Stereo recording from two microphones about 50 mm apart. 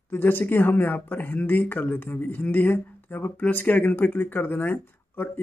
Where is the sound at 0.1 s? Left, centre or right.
Left.